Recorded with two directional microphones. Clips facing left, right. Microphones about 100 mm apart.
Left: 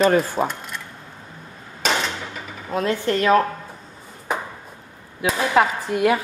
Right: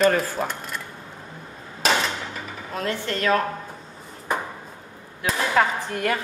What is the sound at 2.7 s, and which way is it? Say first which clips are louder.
Speech: left 6 dB; 20° left (ahead or behind).